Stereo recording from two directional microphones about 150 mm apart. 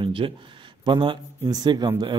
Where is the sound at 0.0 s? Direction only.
35° right (ahead or behind).